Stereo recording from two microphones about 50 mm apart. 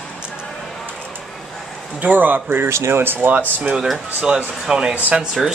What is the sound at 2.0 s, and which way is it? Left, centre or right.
Speech, right.